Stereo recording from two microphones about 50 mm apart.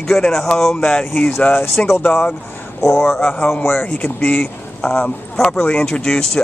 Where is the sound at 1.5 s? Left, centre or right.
Left.